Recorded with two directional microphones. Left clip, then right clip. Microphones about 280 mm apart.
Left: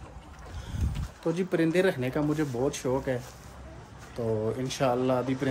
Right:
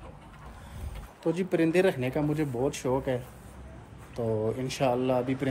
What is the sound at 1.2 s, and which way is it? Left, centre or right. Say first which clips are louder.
Speech: even; centre.